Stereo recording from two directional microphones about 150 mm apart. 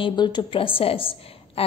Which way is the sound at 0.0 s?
30° left (ahead or behind).